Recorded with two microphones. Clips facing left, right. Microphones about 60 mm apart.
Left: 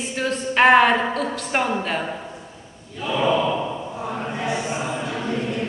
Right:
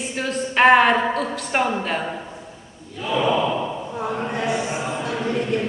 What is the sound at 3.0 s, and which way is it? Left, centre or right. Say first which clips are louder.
Gasp: even; centre.